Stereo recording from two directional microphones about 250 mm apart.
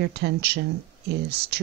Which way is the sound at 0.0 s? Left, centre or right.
Right.